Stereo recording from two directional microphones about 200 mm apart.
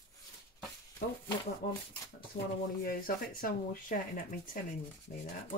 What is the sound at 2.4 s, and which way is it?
Speech, 65° left (ahead or behind).